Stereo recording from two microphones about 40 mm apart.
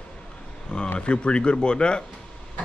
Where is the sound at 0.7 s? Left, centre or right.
Left.